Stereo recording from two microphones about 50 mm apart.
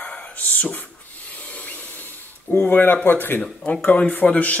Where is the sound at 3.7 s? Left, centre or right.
Left.